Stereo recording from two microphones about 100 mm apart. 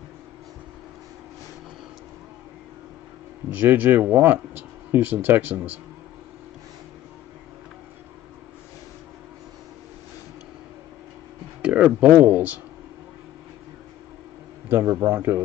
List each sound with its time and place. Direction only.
3.4 s speech: 20° right (ahead or behind)
11.6 s speech: 15° right (ahead or behind)
14.7 s speech: 25° right (ahead or behind)